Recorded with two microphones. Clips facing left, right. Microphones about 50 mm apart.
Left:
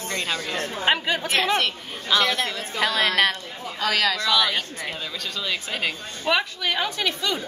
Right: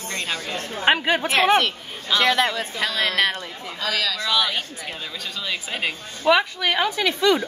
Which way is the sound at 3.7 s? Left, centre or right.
Left.